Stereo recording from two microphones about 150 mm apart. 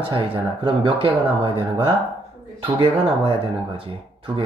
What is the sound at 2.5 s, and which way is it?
Speech, 35° right (ahead or behind).